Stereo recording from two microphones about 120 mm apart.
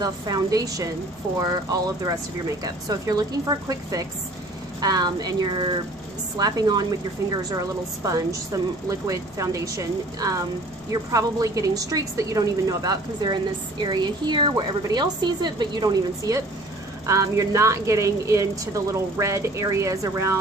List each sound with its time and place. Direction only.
0.0 s a woman's voice: 30° right (ahead or behind)